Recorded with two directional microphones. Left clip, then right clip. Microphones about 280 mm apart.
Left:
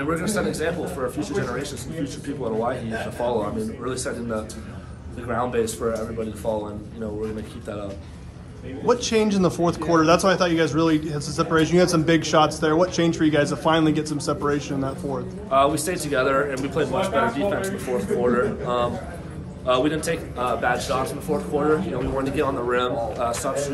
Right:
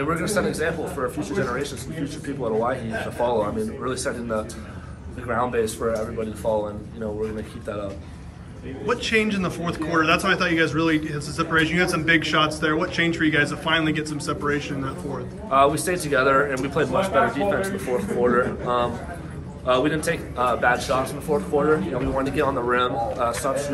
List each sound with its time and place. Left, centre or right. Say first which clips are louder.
0.0 s a man's voice: right 1 dB; centre
8.8 s a man's voice: left 2 dB; centre
15.5 s a man's voice: right 1 dB; centre